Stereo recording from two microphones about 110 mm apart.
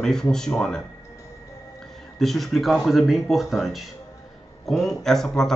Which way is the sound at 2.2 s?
Centre (ahead or behind).